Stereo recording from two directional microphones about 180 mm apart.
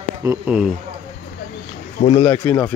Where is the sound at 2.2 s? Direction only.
10° left (ahead or behind).